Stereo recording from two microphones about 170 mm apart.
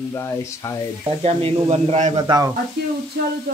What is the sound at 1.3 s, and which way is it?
Speech, 35° right (ahead or behind).